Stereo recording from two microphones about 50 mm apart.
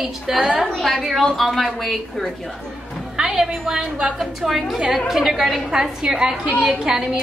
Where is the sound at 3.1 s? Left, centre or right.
Centre.